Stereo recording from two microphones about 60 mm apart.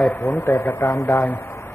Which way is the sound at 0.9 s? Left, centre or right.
Left.